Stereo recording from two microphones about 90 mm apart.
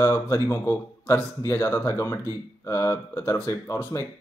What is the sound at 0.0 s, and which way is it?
Speech, 35° left (ahead or behind).